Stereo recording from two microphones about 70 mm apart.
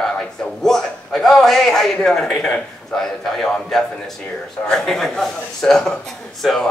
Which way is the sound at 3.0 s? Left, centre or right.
Centre.